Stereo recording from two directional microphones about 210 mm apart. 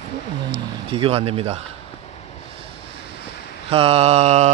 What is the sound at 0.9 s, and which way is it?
Speech, 25° right (ahead or behind).